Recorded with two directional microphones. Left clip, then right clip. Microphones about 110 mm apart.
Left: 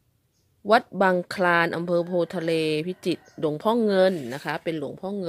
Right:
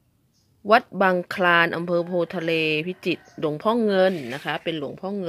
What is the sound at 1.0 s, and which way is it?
A woman's voice, 25° left (ahead or behind).